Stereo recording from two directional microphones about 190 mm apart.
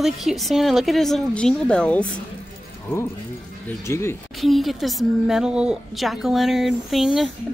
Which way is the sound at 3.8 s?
15° left (ahead or behind).